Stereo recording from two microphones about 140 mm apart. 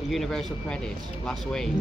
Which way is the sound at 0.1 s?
Centre (ahead or behind).